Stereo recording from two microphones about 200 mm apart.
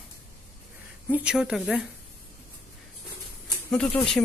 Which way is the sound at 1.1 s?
5° right (ahead or behind).